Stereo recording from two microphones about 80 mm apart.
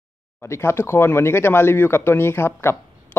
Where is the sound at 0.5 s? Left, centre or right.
Left.